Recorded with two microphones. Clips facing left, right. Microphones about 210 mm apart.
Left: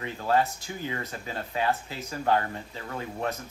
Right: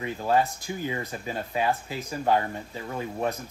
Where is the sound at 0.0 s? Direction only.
15° right (ahead or behind).